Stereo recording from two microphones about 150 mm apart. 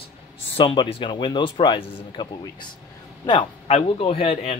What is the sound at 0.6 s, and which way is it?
Speech, 40° left (ahead or behind).